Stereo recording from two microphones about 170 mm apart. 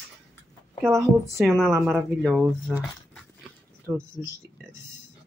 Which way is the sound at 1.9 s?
Centre (ahead or behind).